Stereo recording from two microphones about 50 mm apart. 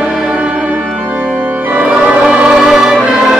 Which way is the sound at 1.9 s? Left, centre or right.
Right.